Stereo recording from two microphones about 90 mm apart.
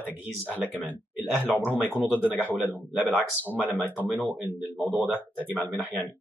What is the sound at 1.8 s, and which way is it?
Speech, 20° right (ahead or behind).